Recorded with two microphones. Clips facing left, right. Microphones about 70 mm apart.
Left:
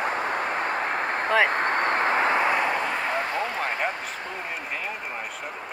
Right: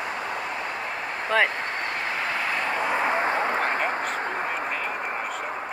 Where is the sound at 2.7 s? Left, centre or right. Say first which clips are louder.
Right 2 dB; centre.